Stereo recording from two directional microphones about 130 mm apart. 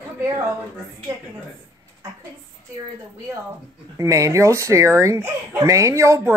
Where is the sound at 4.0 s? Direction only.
25° right (ahead or behind).